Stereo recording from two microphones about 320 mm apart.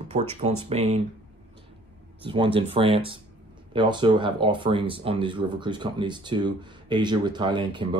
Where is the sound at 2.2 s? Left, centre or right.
Centre.